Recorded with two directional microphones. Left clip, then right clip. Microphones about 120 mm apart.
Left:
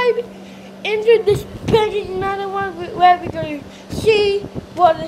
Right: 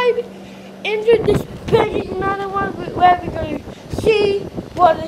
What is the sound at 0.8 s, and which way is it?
Speech, 35° left (ahead or behind).